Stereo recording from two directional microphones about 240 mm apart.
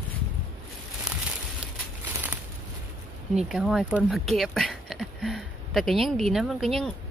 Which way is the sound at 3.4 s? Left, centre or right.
Centre.